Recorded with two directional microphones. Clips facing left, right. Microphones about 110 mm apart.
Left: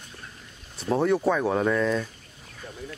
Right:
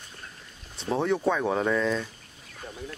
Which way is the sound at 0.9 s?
5° left (ahead or behind).